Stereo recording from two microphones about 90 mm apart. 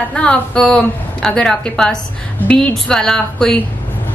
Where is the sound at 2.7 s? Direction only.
5° left (ahead or behind).